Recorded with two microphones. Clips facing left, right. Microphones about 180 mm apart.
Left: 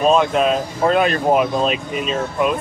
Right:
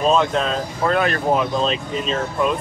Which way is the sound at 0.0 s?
15° left (ahead or behind).